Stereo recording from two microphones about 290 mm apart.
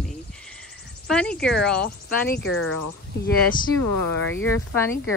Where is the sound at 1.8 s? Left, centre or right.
Left.